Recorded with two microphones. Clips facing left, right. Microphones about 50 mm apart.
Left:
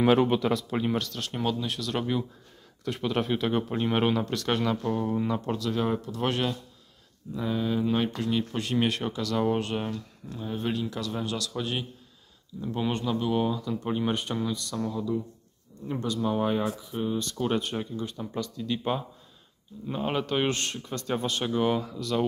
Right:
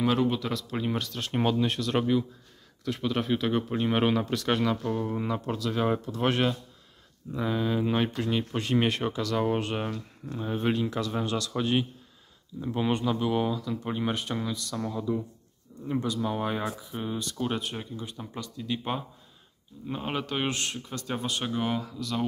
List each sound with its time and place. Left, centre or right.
0.0 s speech: left
0.5 s speech: centre
0.9 s speech: centre
2.8 s speech: centre
14.8 s speech: centre
21.5 s speech: centre